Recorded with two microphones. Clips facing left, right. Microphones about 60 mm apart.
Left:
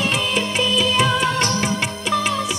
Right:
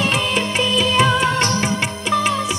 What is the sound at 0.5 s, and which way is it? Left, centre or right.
Music, right.